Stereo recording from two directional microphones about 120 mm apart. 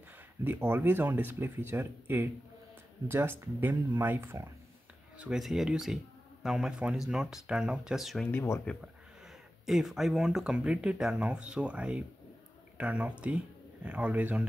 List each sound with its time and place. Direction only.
0.4 s speech: 15° right (ahead or behind)
5.2 s speech: 5° right (ahead or behind)
8.3 s speech: 20° left (ahead or behind)
9.7 s speech: centre (ahead or behind)